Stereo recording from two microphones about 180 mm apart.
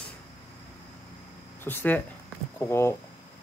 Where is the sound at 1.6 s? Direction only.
10° left (ahead or behind).